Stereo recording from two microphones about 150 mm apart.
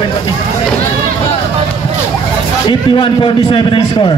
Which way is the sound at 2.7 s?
35° left (ahead or behind).